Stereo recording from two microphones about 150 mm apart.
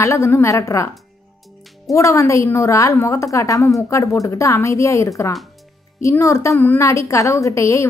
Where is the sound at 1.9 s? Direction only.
20° left (ahead or behind).